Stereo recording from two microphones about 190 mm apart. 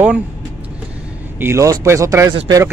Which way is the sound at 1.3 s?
15° right (ahead or behind).